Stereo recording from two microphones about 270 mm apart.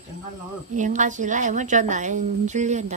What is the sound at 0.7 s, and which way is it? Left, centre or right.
A woman's voice, right.